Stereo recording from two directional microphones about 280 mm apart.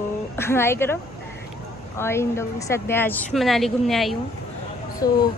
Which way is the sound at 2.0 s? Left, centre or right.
Centre.